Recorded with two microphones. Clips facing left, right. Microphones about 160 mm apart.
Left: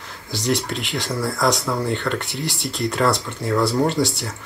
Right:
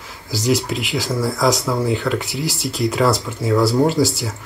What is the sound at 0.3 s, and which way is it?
Speech, centre (ahead or behind).